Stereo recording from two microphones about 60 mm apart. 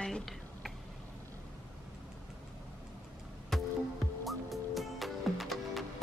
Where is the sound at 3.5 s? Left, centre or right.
Centre.